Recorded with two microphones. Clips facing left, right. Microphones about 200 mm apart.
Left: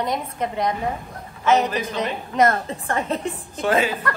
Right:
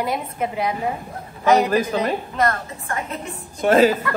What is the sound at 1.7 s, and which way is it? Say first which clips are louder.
Speech: right 7 dB; 50° right (ahead or behind).